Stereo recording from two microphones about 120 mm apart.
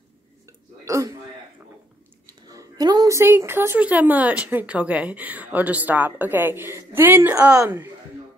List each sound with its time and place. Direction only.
0.5 s hiccup: 25° right (ahead or behind)
2.2 s a sound: 30° right (ahead or behind)
3.2 s speech: 20° right (ahead or behind)